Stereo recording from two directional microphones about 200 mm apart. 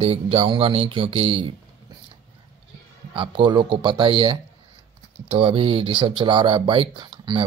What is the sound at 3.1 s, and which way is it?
Speech, 25° right (ahead or behind).